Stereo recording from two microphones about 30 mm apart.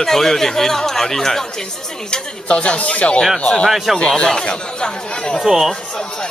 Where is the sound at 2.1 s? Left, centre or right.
Left.